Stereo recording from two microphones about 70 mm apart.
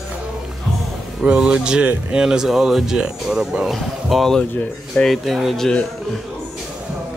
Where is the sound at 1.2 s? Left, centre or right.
Centre.